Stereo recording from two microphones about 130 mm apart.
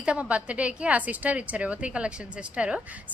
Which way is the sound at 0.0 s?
10° right (ahead or behind).